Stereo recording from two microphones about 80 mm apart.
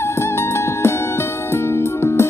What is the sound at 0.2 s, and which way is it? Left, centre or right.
Music, left.